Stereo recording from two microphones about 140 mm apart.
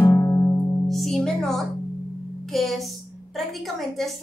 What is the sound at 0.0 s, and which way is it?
Music, 20° left (ahead or behind).